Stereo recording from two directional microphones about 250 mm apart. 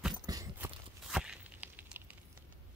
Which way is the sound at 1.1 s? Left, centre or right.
Centre.